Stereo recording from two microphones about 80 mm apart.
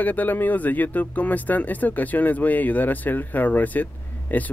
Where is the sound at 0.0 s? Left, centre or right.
Left.